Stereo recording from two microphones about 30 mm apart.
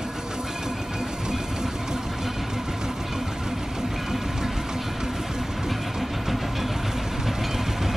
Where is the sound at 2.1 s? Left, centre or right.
Centre.